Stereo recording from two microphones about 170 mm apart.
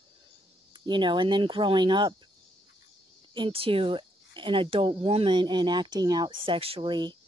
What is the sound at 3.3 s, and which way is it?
Speech, 30° right (ahead or behind).